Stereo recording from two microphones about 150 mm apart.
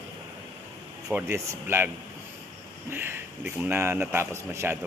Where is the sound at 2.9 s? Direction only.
15° right (ahead or behind).